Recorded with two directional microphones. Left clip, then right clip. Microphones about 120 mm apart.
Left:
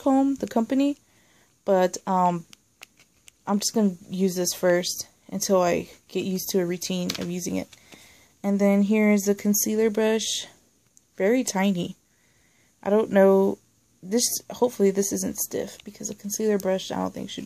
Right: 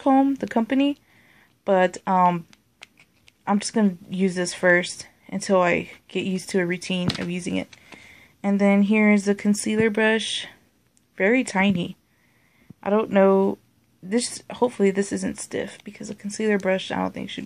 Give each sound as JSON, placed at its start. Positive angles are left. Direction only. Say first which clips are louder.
{"t": 0.0, "sound": "a woman's voice", "louder": "right 3 dB", "side_deg": 35}
{"t": 11.7, "sound": "a woman's voice", "louder": "right 2 dB", "side_deg": 40}